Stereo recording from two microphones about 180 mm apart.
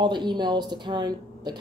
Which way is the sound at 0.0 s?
25° right (ahead or behind).